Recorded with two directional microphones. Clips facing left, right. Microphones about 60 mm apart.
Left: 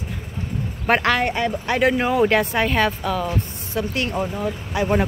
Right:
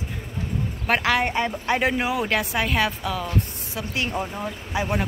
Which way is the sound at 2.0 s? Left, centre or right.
Centre.